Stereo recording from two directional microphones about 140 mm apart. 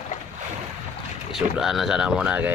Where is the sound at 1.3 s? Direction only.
5° right (ahead or behind).